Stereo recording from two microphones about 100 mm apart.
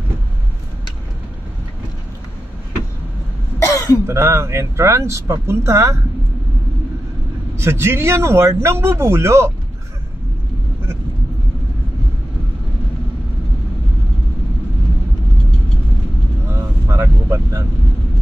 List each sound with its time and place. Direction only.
3.5 s cough: 30° left (ahead or behind)
4.0 s speech: 25° right (ahead or behind)
7.5 s speech: 25° right (ahead or behind)
16.4 s vehicle: 25° right (ahead or behind)